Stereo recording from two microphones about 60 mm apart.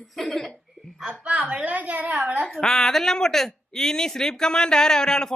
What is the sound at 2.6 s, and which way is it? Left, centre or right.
Speech, centre.